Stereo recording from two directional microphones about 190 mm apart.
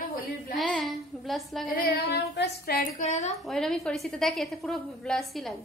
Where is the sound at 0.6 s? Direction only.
5° left (ahead or behind).